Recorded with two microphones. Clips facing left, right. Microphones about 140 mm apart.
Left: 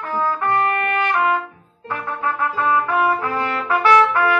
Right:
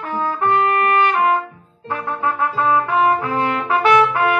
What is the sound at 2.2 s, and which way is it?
Trumpet, 25° right (ahead or behind).